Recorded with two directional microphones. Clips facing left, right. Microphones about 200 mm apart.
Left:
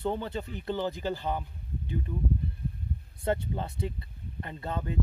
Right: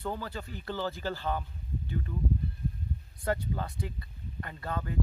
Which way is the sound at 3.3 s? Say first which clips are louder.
Left 2 dB; 25° left (ahead or behind).